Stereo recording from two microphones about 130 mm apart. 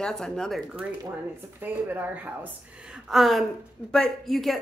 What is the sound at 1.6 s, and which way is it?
A woman's voice, 15° right (ahead or behind).